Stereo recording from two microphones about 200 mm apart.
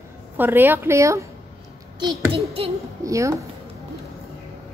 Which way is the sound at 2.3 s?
30° right (ahead or behind).